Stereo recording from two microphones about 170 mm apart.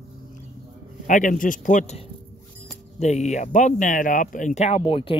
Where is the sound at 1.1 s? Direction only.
50° left (ahead or behind).